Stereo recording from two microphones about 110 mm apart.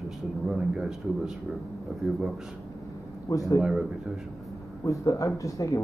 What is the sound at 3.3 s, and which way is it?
Speech, 30° left (ahead or behind).